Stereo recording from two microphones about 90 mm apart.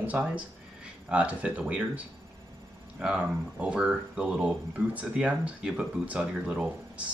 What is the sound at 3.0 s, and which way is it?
Speech, 10° right (ahead or behind).